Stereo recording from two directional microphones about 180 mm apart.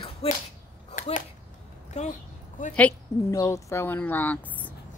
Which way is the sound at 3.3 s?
20° left (ahead or behind).